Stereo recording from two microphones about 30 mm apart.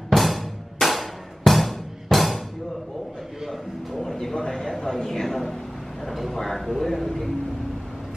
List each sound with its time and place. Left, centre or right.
0.1 s music: centre
4.0 s a man's voice: centre